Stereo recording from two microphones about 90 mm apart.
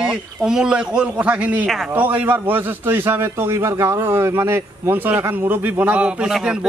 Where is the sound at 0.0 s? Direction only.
10° right (ahead or behind).